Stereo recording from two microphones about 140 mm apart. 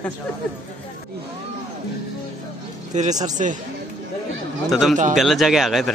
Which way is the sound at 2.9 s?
60° right (ahead or behind).